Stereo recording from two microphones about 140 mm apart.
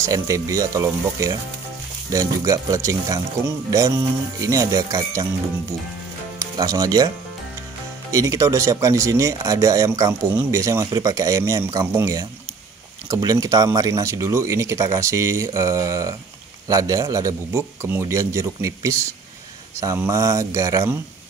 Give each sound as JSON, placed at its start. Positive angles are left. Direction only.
{"t": 0.0, "sound": "speech", "side_deg": -25}
{"t": 6.4, "sound": "speech", "side_deg": -25}
{"t": 8.1, "sound": "speech", "side_deg": -25}